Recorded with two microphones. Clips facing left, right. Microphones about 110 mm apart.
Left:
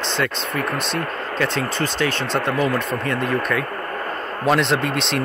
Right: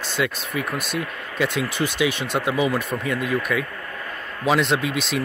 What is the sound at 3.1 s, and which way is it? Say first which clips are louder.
Speech: left 2 dB; 50° left (ahead or behind).